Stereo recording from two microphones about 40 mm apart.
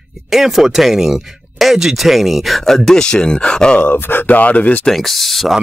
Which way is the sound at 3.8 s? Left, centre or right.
Left.